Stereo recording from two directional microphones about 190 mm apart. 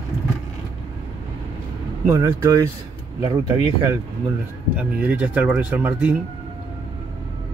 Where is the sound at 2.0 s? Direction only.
15° right (ahead or behind).